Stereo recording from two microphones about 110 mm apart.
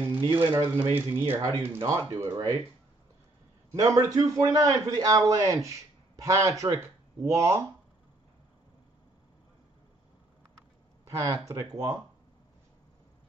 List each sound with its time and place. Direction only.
0.2 s speech: 45° right (ahead or behind)
0.9 s a man's voice: 20° right (ahead or behind); by 2.6 s 35° right (ahead or behind)
3.7 s a man's voice: 30° right (ahead or behind)
11.1 s speech: 30° right (ahead or behind)